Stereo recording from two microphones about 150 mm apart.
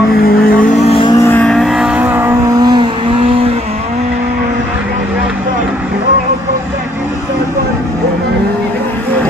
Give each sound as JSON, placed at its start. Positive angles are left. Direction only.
{"t": 0.2, "sound": "car", "side_deg": 85}
{"t": 0.7, "sound": "vehicle", "side_deg": 40}
{"t": 1.1, "sound": "vehicle", "side_deg": 20}
{"t": 1.4, "sound": "vehicle", "side_deg": 5}
{"t": 2.6, "sound": "vehicle", "side_deg": -30}